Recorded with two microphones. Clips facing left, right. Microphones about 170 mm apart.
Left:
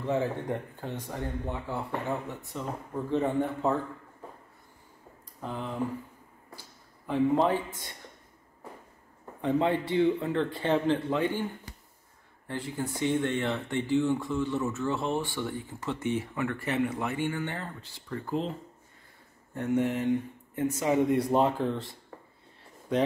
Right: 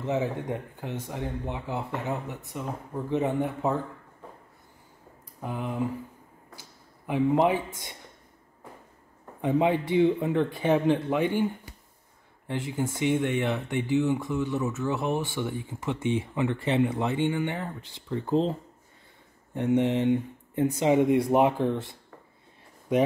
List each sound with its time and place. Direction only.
0.5 s speech: 15° right (ahead or behind)
5.4 s speech: 10° right (ahead or behind)
7.1 s speech: 15° right (ahead or behind)
9.4 s speech: 10° right (ahead or behind)
12.4 s speech: 20° right (ahead or behind)
14.6 s speech: centre (ahead or behind)
14.9 s speech: 15° right (ahead or behind)
19.5 s speech: 20° right (ahead or behind)